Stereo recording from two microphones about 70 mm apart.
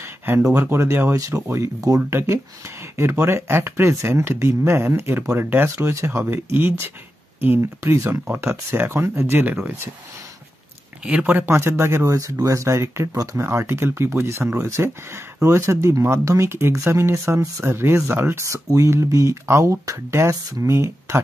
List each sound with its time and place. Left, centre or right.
0.0 s a sound: right
0.5 s speech: right
11.1 s speech: centre
11.4 s speech: right
13.5 s speech: right